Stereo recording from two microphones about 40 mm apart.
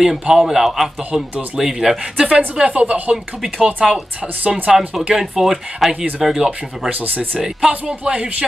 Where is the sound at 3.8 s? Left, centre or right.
Centre.